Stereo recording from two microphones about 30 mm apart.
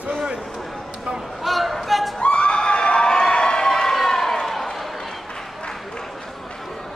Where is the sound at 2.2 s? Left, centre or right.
Left.